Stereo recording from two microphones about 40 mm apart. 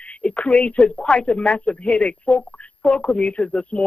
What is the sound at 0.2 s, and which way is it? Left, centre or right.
A man's voice, left.